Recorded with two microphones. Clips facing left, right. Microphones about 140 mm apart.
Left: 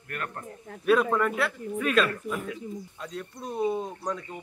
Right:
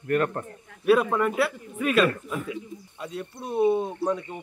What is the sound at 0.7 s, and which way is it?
Speech, 35° left (ahead or behind).